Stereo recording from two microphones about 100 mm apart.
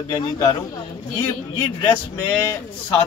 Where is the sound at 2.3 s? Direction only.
30° left (ahead or behind).